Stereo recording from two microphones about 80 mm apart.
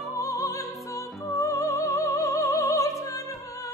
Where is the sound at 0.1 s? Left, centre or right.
Left.